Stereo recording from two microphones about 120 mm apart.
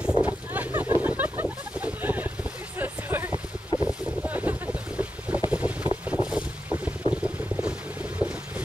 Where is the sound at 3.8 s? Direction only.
10° right (ahead or behind).